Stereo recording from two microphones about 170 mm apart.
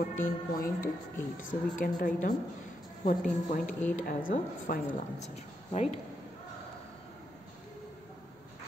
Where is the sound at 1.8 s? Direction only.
50° left (ahead or behind).